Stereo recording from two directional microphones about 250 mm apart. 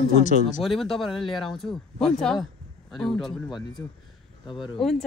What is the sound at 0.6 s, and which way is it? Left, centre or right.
Speech, centre.